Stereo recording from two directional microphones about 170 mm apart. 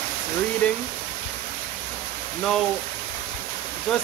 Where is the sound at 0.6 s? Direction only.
10° left (ahead or behind).